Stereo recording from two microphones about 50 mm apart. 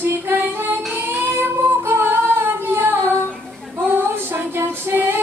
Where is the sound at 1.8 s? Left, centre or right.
Right.